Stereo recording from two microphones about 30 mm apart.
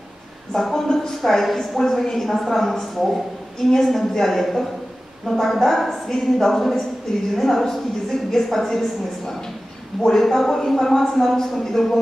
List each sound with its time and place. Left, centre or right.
0.7 s a woman's voice: centre